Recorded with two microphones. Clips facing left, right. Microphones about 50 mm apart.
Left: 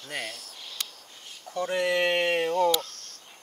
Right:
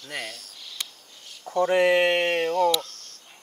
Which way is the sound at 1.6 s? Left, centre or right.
Right.